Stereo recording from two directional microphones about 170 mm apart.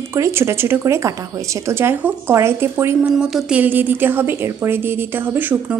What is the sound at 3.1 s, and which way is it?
A woman's voice, centre (ahead or behind).